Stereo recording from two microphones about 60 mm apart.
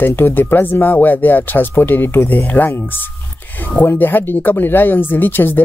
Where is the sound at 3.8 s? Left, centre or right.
Left.